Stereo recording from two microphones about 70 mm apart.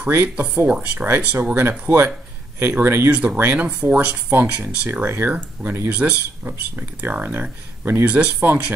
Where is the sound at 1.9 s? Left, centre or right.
Right.